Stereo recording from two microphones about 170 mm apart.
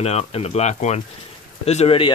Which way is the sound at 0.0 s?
40° left (ahead or behind).